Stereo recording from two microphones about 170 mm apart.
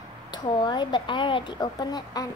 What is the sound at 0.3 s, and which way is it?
A woman's voice, 25° left (ahead or behind).